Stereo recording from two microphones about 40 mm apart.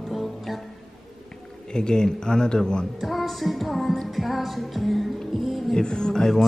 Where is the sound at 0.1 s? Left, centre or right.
Centre.